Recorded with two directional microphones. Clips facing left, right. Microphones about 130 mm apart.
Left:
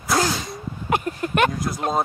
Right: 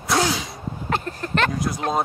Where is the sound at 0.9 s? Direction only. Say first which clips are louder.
Left 3 dB; 15° left (ahead or behind).